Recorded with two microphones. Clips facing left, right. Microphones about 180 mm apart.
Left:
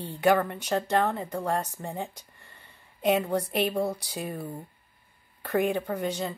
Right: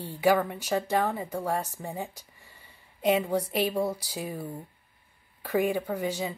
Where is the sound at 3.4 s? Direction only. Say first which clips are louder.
Even; 60° left (ahead or behind).